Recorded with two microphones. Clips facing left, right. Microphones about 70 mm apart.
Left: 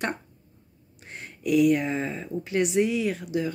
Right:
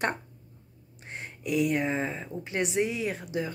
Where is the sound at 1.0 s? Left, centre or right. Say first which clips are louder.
Left 5 dB; right.